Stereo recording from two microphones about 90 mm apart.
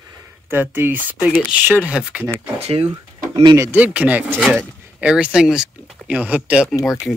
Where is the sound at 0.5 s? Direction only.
20° right (ahead or behind).